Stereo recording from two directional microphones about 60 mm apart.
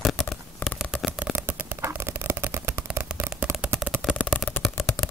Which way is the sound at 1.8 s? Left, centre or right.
Right.